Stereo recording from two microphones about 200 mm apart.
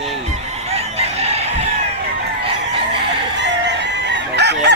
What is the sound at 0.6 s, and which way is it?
Chicken, 30° right (ahead or behind).